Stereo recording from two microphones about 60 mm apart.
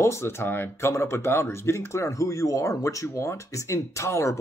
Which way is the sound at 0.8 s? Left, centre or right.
Left.